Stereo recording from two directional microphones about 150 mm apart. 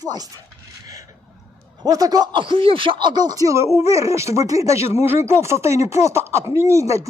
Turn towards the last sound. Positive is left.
turn(degrees=-20)  # may be behind; listen again after turning